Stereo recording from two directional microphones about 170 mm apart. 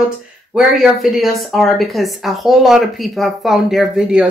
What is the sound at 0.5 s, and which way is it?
Speech, 5° right (ahead or behind).